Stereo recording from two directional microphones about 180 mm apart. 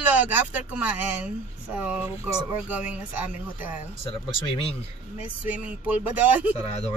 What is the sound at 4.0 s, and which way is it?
Speech, 30° left (ahead or behind).